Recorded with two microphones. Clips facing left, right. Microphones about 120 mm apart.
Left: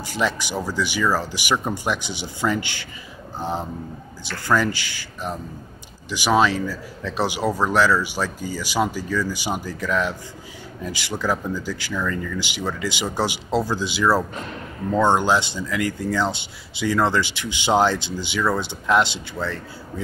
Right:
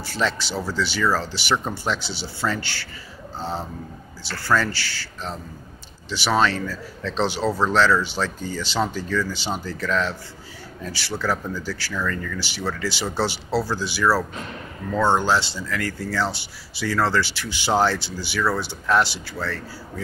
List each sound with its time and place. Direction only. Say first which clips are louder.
0.0 s speech: left 1 dB; 15° left (ahead or behind)